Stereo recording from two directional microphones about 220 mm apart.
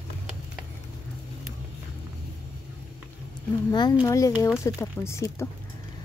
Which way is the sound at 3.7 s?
20° left (ahead or behind).